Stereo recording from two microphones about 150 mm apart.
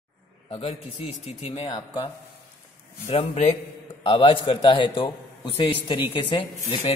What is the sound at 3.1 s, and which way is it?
A man's voice, 45° left (ahead or behind).